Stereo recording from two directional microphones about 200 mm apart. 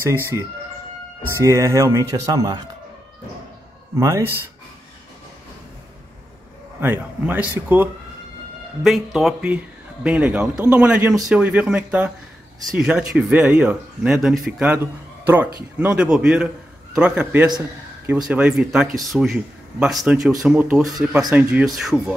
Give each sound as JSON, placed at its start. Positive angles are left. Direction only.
{"t": 0.0, "sound": "speech", "side_deg": -10}
{"t": 4.0, "sound": "speech", "side_deg": -15}
{"t": 6.8, "sound": "speech", "side_deg": -10}